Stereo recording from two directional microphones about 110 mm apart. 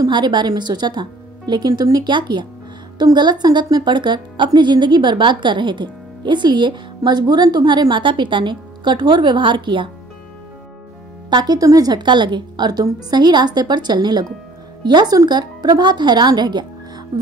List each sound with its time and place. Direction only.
0.1 s speech: 45° right (ahead or behind)
11.2 s a woman's voice: 40° right (ahead or behind)